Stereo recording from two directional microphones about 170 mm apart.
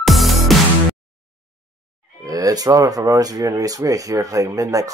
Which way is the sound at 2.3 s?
20° right (ahead or behind).